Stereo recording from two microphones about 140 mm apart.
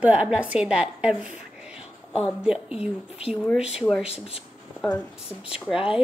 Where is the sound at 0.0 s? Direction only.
10° right (ahead or behind).